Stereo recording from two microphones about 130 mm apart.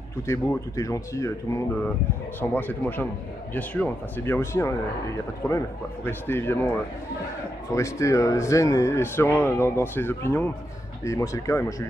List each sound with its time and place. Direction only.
0.3 s speech: 25° left (ahead or behind)